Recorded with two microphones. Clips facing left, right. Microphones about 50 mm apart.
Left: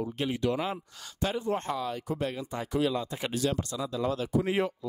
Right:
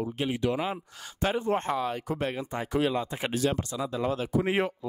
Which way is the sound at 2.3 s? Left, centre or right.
Right.